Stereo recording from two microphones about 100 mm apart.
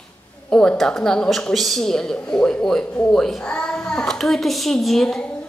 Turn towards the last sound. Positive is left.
turn(degrees=5)  # may be behind; listen again after turning